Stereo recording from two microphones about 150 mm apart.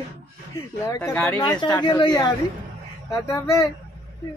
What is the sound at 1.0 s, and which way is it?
Speech, 10° left (ahead or behind).